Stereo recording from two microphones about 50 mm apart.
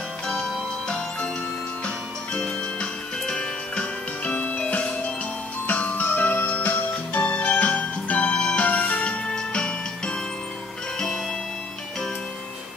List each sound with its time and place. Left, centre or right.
0.3 s music: centre
2.3 s music: centre